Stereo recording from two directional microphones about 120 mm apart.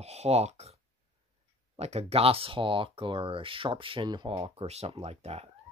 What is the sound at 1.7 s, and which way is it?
Speech, 60° right (ahead or behind).